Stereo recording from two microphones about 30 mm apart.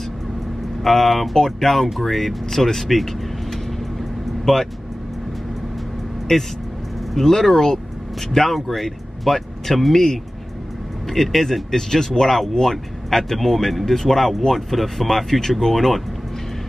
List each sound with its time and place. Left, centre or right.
0.8 s speech: centre
4.5 s speech: centre
6.3 s speech: centre
8.5 s speech: centre